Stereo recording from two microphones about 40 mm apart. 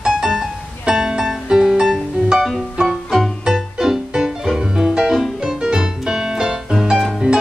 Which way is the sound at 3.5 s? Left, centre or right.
Centre.